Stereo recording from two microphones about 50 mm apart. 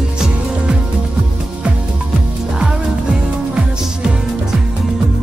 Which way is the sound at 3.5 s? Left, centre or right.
Centre.